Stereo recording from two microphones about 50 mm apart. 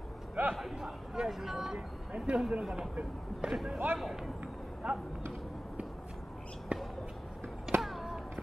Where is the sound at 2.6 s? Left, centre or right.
Centre.